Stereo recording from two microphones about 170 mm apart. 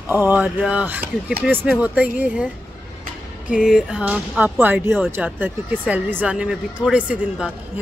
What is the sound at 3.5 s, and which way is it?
Speech, 5° right (ahead or behind).